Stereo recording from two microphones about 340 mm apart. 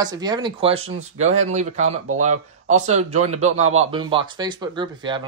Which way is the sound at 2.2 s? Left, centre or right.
Right.